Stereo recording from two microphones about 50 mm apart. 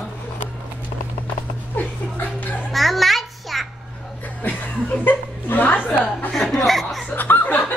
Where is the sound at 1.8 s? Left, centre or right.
Left.